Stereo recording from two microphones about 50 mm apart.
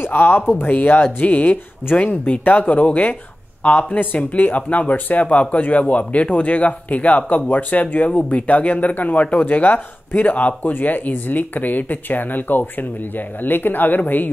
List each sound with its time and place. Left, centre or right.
0.0 s speech: left
0.7 s speech: left